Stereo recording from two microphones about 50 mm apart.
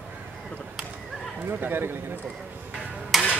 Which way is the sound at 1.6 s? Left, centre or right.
Right.